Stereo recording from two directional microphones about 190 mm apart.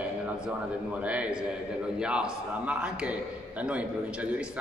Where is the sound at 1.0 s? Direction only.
5° right (ahead or behind).